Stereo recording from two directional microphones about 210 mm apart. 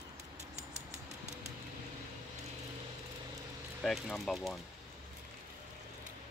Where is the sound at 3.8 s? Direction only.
Centre (ahead or behind).